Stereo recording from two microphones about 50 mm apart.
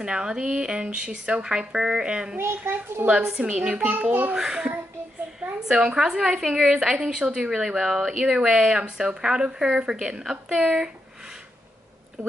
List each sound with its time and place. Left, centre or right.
0.0 s speech: centre
2.3 s a child's voice: right
3.1 s speech: right
3.9 s a child's voice: right
4.4 s a woman's voice: centre